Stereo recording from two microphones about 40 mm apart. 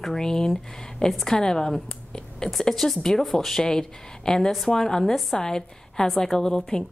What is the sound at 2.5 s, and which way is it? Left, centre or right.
A woman's voice, centre.